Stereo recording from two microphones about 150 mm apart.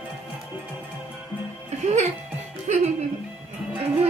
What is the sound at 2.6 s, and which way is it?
Speech, 50° right (ahead or behind).